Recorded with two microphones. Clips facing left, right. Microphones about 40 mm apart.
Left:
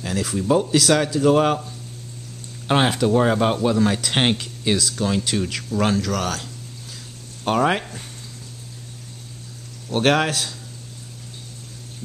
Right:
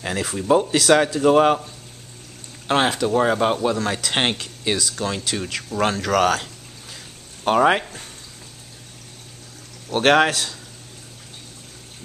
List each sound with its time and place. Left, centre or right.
0.0 s speech: right
2.7 s speech: centre
6.0 s speech: right
7.4 s speech: centre
9.9 s speech: centre